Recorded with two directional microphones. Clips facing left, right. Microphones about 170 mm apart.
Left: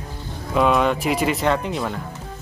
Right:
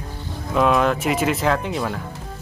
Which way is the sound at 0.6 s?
Centre (ahead or behind).